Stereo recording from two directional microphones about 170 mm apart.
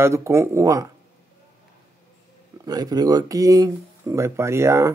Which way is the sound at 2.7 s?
20° right (ahead or behind).